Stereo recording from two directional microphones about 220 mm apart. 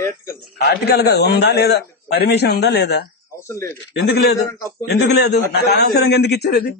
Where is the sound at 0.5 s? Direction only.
45° left (ahead or behind).